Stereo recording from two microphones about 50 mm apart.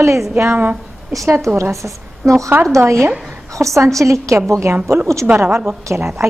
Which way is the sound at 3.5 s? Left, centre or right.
Right.